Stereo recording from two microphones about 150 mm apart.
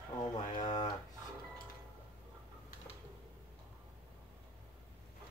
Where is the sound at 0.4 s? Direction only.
55° left (ahead or behind).